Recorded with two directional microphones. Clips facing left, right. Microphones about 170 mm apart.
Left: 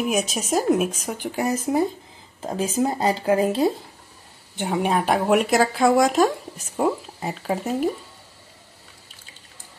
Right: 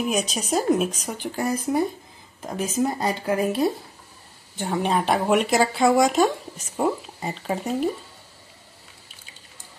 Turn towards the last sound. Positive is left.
turn(degrees=5)  # may be behind; listen again after turning